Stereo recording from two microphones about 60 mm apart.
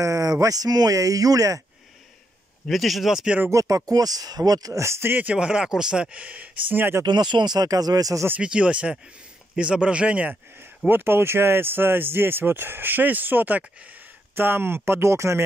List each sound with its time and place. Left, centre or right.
0.0 s speech: right
2.7 s speech: centre
3.4 s speech: right
4.8 s speech: right
5.3 s speech: centre
6.1 s speech: right
7.5 s speech: right
8.4 s speech: centre
10.9 s speech: right
14.3 s speech: right